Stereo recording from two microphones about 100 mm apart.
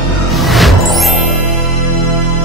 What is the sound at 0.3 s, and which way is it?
Music, centre (ahead or behind).